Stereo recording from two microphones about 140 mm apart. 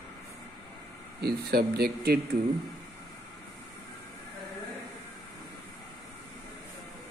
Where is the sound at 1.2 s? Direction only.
90° right.